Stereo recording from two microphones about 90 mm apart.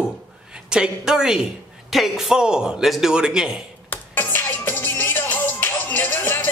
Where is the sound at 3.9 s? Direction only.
20° left (ahead or behind).